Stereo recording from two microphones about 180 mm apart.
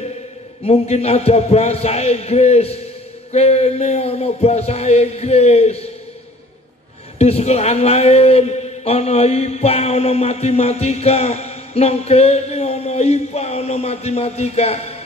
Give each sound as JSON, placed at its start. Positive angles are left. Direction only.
{"t": 0.7, "sound": "a man's voice", "side_deg": 35}
{"t": 7.2, "sound": "a man's voice", "side_deg": 35}